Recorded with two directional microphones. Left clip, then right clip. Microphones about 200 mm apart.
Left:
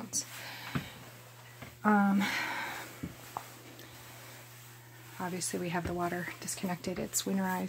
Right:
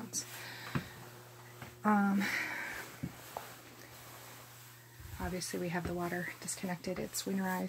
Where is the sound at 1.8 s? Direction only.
15° left (ahead or behind).